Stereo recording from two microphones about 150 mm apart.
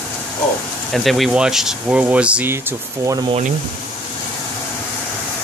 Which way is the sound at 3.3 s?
50° right (ahead or behind).